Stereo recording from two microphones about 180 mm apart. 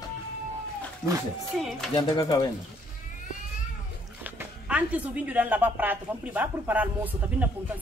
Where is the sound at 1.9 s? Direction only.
20° left (ahead or behind).